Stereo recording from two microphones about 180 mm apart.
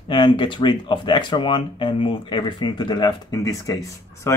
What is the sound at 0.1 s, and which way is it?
Speech, 25° left (ahead or behind).